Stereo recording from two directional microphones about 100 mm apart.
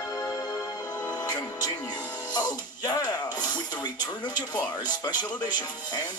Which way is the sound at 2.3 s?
40° left (ahead or behind).